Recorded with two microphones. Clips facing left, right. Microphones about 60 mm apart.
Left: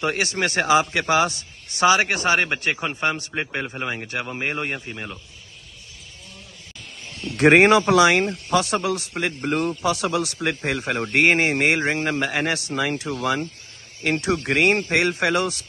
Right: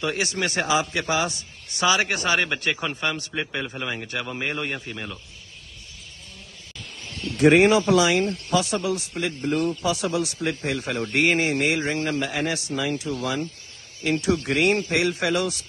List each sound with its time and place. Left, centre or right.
0.0 s a man's voice: left
4.7 s speech: centre
7.3 s a man's voice: left
10.9 s a man's voice: left